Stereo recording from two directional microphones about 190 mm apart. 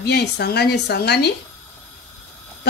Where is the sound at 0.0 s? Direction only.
60° left (ahead or behind).